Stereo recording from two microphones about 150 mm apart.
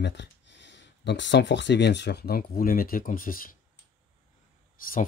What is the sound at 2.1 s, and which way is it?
Speech, 90° left.